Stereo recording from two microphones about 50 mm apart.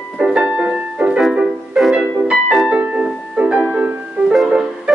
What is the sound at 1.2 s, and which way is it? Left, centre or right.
Music, centre.